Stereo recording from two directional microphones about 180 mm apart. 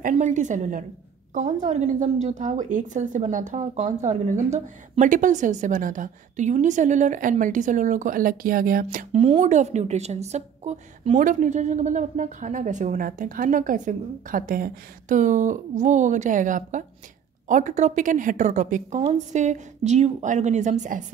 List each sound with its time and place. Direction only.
0.0 s a woman's voice: 45° right (ahead or behind)
9.1 s a woman's voice: 35° right (ahead or behind)